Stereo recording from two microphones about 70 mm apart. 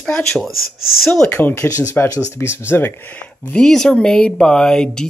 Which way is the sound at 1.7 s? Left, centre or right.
Left.